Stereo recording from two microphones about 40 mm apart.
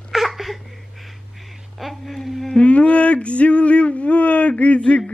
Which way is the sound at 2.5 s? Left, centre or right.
Left.